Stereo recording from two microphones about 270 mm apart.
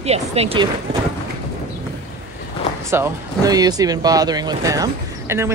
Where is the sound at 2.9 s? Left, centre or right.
Centre.